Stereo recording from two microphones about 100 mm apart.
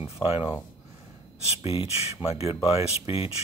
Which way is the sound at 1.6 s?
80° left.